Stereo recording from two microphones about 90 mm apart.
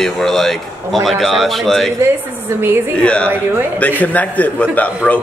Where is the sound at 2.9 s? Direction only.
10° left (ahead or behind).